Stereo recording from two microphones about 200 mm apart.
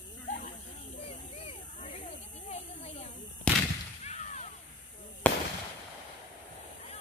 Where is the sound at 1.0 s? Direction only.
30° left (ahead or behind).